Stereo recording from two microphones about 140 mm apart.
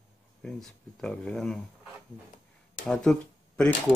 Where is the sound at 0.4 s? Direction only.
Centre (ahead or behind).